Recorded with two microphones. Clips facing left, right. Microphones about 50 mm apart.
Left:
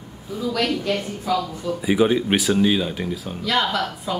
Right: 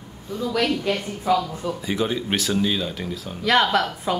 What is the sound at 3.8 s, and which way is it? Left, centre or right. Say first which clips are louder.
Speech: right 3 dB; right.